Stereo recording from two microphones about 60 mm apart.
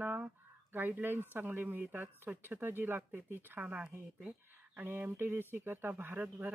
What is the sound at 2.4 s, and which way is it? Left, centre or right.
Speech, right.